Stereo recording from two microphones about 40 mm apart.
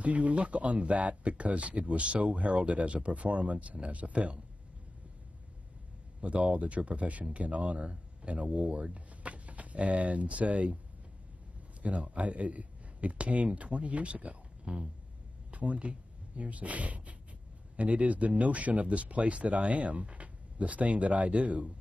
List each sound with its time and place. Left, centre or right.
0.0 s speech: right
6.2 s speech: right
11.8 s speech: right